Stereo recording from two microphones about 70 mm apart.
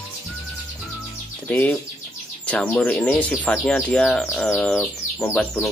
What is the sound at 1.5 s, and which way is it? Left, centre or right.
Speech, centre.